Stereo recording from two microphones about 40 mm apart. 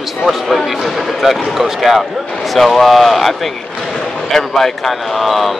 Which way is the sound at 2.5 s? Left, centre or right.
Centre.